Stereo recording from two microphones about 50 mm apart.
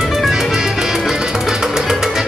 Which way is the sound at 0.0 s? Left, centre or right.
Centre.